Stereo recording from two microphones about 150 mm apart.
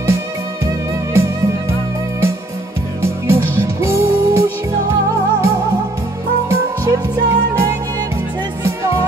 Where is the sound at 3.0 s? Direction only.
20° right (ahead or behind).